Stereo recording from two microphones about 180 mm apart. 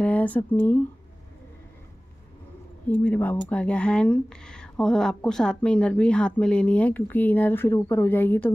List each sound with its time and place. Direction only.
0.0 s speech: 10° left (ahead or behind)
2.9 s speech: 10° left (ahead or behind)